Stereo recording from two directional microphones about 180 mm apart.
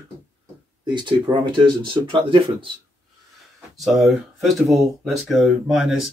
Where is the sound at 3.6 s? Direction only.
Centre (ahead or behind).